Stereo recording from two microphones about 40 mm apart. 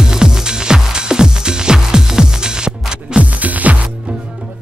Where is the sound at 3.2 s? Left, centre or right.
Right.